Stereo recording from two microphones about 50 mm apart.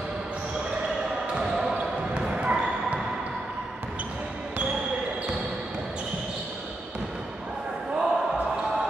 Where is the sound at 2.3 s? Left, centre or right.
Right.